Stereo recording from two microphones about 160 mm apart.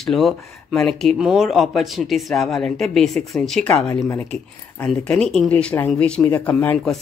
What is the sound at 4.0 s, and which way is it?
Speech, 20° left (ahead or behind).